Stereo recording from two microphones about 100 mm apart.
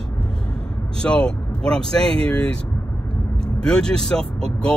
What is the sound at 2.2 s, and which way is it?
Speech, 10° left (ahead or behind).